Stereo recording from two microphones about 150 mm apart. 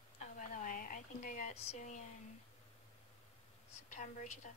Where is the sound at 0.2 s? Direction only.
60° left (ahead or behind).